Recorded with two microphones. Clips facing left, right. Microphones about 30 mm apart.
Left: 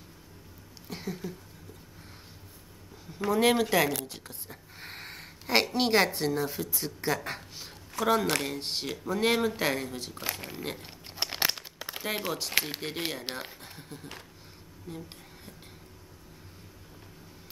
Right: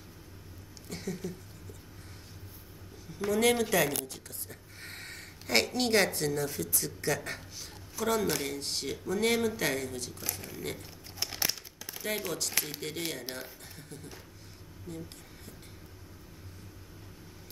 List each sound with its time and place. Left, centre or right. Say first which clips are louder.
0.8 s a woman's voice: left 1 dB; centre
3.3 s a woman's voice: left 2 dB; left
8.0 s speech: left 4 dB; left
8.5 s a woman's voice: left 1 dB; left
10.1 s speech: left 4 dB; left
10.6 s a woman's voice: left 1 dB; left
11.1 s crumpling: left 4 dB; left
12.3 s a woman's voice: left 2 dB; left
12.5 s speech: left 4 dB; left
13.7 s speech: left 3 dB; left